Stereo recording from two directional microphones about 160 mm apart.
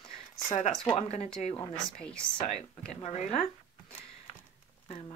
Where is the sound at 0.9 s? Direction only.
40° left (ahead or behind).